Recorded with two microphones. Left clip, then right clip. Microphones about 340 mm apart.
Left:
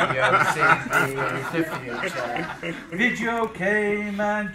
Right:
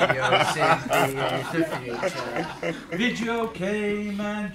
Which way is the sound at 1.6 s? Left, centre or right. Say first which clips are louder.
Right 1 dB; centre.